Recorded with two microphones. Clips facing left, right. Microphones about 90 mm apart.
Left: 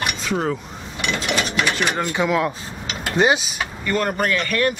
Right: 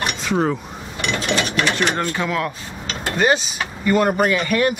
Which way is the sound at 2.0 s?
15° left (ahead or behind).